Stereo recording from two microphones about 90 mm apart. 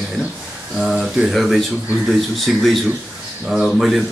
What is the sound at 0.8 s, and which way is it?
A man's voice, 5° right (ahead or behind).